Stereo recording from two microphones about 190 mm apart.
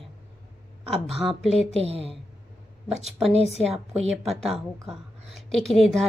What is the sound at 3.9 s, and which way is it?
Speech, centre (ahead or behind).